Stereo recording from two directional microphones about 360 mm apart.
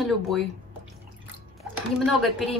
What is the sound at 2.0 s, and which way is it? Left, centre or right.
Speech, centre.